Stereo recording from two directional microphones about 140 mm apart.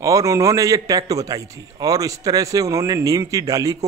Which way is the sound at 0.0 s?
25° right (ahead or behind).